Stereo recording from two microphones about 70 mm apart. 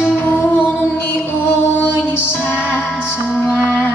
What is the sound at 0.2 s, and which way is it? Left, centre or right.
Music, left.